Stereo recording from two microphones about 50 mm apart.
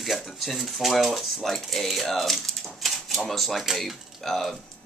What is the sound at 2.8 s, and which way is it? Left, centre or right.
Typewriter, centre.